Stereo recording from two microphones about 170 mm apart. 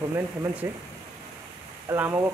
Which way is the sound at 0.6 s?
15° right (ahead or behind).